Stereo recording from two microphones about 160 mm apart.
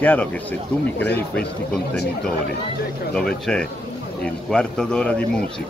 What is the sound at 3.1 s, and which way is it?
A man's voice, 5° left (ahead or behind).